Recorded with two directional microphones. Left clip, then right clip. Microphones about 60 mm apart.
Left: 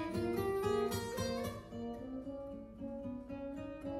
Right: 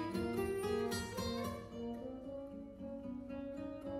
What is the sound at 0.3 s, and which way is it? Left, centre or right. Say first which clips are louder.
Music: left 4 dB; left.